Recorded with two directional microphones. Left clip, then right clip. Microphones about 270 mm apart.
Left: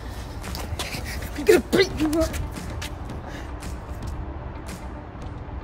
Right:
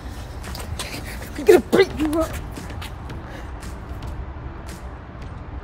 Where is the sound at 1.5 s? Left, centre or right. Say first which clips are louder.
Right 4 dB; centre.